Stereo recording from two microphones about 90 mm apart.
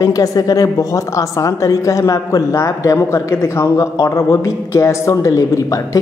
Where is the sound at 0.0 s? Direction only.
40° left (ahead or behind).